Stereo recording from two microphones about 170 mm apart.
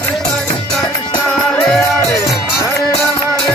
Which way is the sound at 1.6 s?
5° left (ahead or behind).